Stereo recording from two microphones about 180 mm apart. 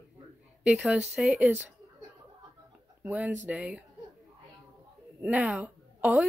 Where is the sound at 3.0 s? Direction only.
10° right (ahead or behind).